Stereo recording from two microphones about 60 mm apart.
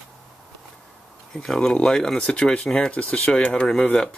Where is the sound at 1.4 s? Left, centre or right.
Centre.